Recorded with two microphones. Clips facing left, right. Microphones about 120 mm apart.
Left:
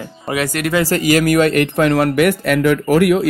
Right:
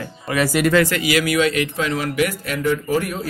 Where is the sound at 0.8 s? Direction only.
40° left (ahead or behind).